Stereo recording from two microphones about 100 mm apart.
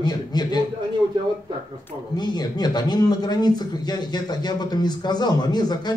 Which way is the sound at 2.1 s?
45° left (ahead or behind).